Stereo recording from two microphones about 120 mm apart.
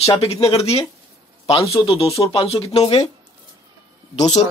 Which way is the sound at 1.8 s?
55° left (ahead or behind).